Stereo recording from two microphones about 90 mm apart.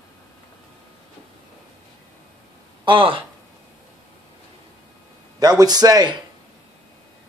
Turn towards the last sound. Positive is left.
turn(degrees=-50)  # may be behind; listen again after turning